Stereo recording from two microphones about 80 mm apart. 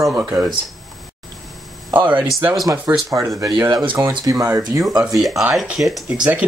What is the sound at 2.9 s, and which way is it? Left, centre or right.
Speech, right.